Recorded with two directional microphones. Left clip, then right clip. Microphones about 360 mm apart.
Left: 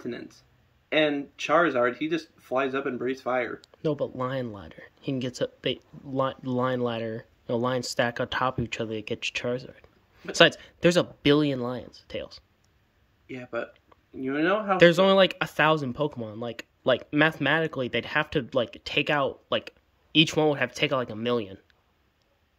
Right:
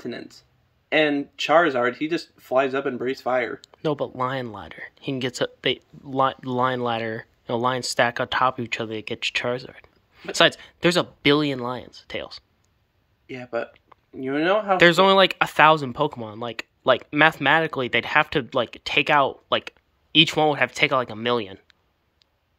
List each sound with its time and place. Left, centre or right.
0.0 s speech: centre
3.7 s speech: centre
13.3 s speech: centre
14.8 s speech: centre